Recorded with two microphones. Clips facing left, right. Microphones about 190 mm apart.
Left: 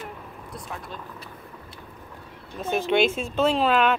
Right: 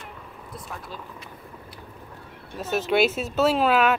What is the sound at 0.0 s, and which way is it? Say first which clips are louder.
Vehicle: left 3 dB; centre (ahead or behind).